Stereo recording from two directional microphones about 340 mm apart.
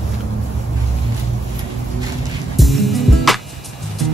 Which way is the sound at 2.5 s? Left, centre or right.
Centre.